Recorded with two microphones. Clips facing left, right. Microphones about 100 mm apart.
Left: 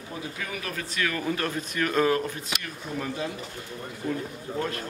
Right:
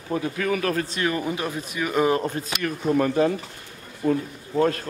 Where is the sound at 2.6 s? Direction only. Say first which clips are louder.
Right 12 dB; 60° right (ahead or behind).